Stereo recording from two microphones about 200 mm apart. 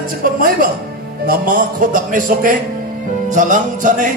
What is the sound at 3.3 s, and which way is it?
Music, 40° right (ahead or behind).